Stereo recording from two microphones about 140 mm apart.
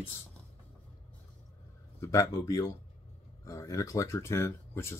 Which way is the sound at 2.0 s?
20° left (ahead or behind).